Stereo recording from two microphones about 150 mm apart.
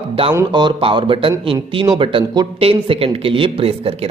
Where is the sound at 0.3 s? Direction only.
25° right (ahead or behind).